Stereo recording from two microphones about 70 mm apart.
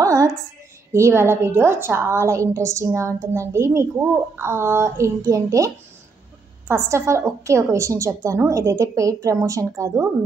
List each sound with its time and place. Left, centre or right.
0.0 s a sound: right
0.9 s a woman's voice: right
6.7 s a woman's voice: right